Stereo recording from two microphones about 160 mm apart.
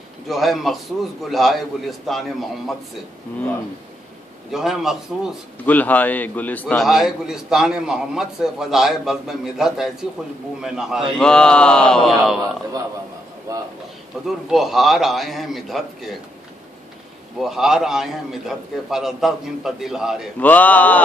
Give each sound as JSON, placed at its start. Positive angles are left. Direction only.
{"t": 0.3, "sound": "a man's voice", "side_deg": 0}
{"t": 4.5, "sound": "a man's voice", "side_deg": 0}
{"t": 5.7, "sound": "a man's voice", "side_deg": 10}
{"t": 6.7, "sound": "a man's voice", "side_deg": 0}
{"t": 13.5, "sound": "speech", "side_deg": -20}
{"t": 14.2, "sound": "a man's voice", "side_deg": 0}
{"t": 17.4, "sound": "a man's voice", "side_deg": 0}
{"t": 20.3, "sound": "a man's voice", "side_deg": 10}